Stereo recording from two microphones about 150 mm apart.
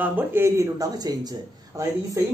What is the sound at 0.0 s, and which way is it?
Speech, 15° right (ahead or behind).